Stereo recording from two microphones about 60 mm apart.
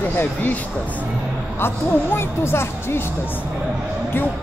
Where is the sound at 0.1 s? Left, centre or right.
Left.